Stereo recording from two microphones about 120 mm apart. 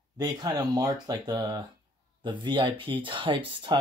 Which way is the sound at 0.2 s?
30° right (ahead or behind).